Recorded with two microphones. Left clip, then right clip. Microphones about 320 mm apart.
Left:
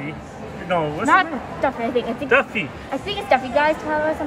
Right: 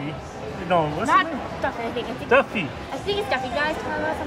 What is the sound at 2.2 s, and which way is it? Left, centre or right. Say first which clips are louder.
Speech: even; centre.